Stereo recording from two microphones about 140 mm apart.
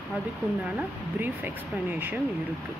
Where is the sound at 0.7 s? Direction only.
10° right (ahead or behind).